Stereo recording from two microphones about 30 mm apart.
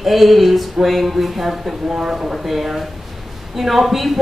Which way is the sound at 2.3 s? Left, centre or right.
Centre.